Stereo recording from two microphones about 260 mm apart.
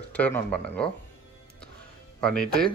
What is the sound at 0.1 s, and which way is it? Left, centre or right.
Speech, centre.